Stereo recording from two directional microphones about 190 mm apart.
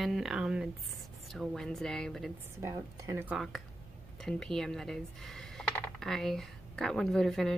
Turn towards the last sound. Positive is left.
turn(degrees=0)  # may be behind; listen again after turning